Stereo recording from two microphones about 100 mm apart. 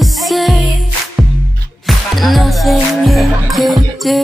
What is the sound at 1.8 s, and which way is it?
Music, centre (ahead or behind).